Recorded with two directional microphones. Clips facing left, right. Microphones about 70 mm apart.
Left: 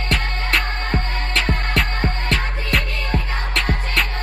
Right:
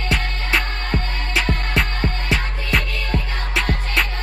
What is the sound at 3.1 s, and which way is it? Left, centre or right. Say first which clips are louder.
Music: even; left.